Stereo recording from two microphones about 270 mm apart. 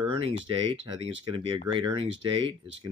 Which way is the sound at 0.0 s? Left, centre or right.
Centre.